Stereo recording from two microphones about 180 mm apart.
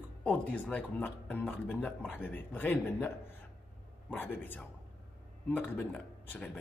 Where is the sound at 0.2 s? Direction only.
10° left (ahead or behind).